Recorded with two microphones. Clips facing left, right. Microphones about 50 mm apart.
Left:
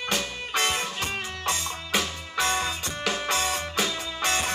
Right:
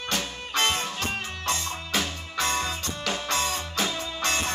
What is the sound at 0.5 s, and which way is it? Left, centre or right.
Music, left.